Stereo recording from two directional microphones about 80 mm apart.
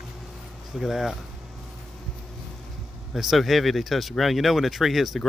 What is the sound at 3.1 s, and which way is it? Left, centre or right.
Speech, centre.